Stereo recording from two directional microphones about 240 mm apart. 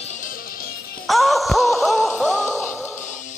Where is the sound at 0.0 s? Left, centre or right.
Left.